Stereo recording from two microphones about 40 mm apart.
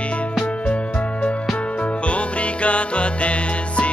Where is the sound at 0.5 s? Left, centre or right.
Left.